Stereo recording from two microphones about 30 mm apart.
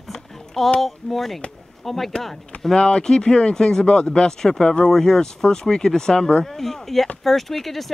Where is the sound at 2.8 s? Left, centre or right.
Left.